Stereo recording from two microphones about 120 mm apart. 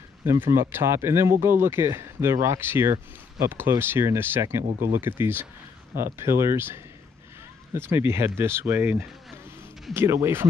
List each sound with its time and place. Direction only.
0.2 s speech: 20° right (ahead or behind)